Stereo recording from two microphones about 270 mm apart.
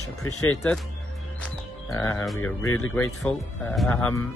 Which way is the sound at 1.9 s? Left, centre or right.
Centre.